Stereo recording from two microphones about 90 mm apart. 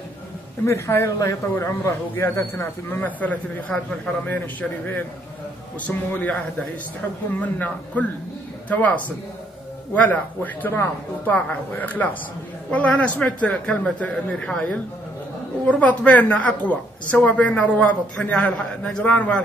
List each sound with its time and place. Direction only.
0.7 s a man's voice: 30° left (ahead or behind)
7.3 s a woman's voice: 15° left (ahead or behind)